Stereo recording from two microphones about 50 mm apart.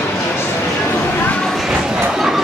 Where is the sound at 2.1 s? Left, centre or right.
Centre.